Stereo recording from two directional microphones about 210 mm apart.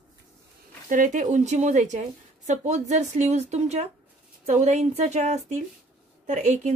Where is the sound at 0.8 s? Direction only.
40° right (ahead or behind).